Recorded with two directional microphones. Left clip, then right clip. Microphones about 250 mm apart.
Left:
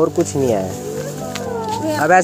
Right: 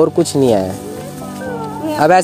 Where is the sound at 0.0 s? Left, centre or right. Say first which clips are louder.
Right 4 dB; right.